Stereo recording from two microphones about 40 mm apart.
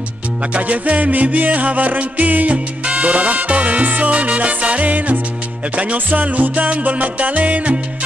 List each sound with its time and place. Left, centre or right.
0.5 s music: right